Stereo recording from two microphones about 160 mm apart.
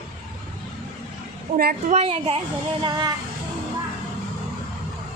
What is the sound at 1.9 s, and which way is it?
Speech, 40° right (ahead or behind).